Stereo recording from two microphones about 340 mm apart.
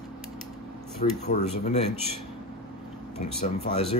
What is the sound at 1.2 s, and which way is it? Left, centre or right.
Speech, centre.